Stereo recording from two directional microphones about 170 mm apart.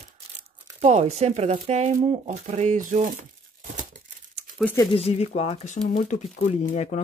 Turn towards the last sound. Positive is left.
turn(degrees=40)  # may be behind; listen again after turning